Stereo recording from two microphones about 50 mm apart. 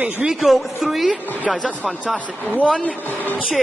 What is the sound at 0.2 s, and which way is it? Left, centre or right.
Speech, centre.